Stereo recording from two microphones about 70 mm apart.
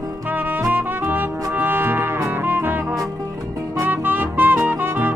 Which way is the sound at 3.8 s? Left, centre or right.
Right.